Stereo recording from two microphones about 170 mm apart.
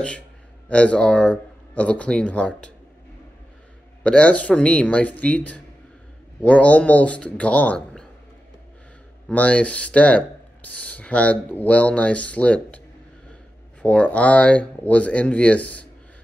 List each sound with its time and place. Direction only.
0.7 s speech: 5° left (ahead or behind)
4.0 s speech: 5° left (ahead or behind)
9.3 s speech: 5° left (ahead or behind)
13.8 s speech: 5° left (ahead or behind)